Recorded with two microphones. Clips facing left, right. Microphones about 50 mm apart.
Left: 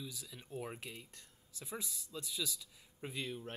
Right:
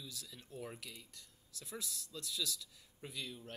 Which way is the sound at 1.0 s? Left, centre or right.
Left.